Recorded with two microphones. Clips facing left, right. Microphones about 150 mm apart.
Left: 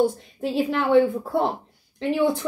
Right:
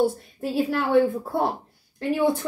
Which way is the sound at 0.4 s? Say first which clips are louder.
Left 1 dB; 20° left (ahead or behind).